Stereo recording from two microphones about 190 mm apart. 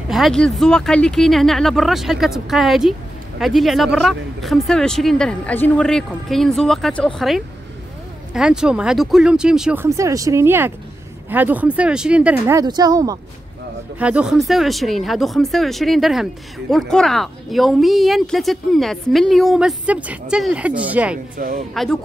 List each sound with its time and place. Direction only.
0.1 s speech: centre (ahead or behind)
9.8 s speech: 15° right (ahead or behind)
13.9 s speech: 5° right (ahead or behind)
21.4 s speech: 45° right (ahead or behind)